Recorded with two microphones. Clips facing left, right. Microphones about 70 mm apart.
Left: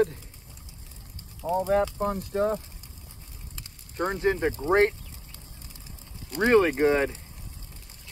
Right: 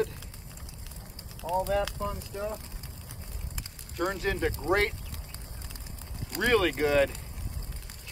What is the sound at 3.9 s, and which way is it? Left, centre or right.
Speech, left.